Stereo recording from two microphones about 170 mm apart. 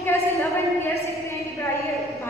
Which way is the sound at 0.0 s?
15° left (ahead or behind).